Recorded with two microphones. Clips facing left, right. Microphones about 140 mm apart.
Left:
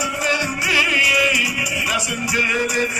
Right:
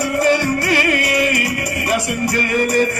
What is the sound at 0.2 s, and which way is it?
Music, 55° right (ahead or behind).